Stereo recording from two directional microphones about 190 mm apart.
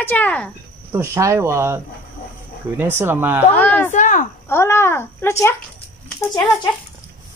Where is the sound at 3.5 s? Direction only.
10° left (ahead or behind).